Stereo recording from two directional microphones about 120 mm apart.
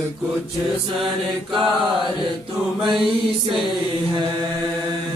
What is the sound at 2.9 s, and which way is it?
Mantra, centre (ahead or behind).